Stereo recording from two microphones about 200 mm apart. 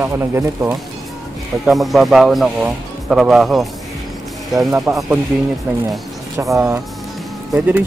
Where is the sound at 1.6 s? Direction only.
Centre (ahead or behind).